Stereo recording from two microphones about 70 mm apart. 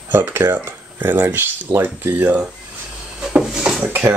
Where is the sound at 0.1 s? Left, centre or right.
Right.